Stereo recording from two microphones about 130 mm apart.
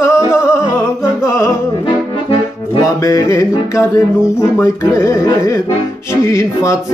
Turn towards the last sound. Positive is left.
turn(degrees=25)  # may be behind; listen again after turning